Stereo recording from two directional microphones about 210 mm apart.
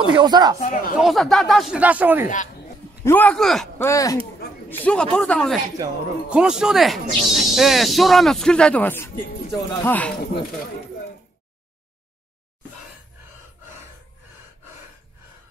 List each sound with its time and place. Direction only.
0.1 s speech: 20° right (ahead or behind)
0.6 s speech: 40° left (ahead or behind)
0.9 s speech: centre (ahead or behind)
2.2 s speech: 35° left (ahead or behind)
3.1 s speech: 5° left (ahead or behind)
3.8 s speech: 15° left (ahead or behind)